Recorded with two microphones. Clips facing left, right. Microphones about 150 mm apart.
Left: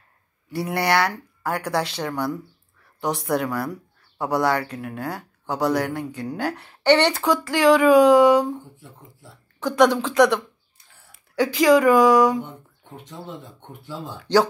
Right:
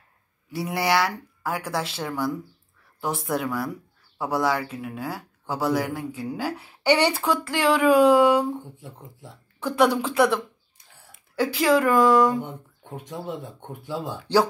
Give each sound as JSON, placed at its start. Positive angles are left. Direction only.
{"t": 0.5, "sound": "speech", "side_deg": 0}
{"t": 8.7, "sound": "speech", "side_deg": -20}
{"t": 9.6, "sound": "speech", "side_deg": -5}
{"t": 12.4, "sound": "speech", "side_deg": -10}